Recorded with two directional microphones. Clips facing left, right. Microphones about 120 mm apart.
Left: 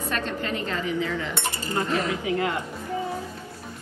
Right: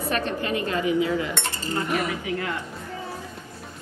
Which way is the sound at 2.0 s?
25° left (ahead or behind).